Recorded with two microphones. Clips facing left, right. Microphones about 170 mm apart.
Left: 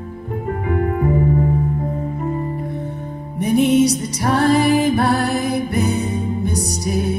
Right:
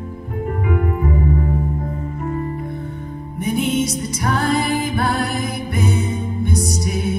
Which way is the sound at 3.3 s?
35° left (ahead or behind).